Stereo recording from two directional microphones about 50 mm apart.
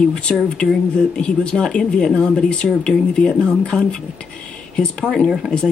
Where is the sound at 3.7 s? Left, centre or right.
Centre.